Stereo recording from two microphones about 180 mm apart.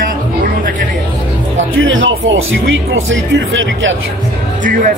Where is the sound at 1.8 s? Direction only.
90° right.